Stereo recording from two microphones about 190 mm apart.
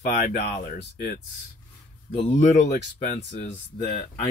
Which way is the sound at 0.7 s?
60° left (ahead or behind).